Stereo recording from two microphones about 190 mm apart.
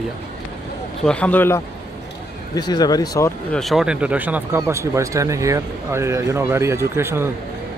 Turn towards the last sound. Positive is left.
turn(degrees=-15)  # may be behind; listen again after turning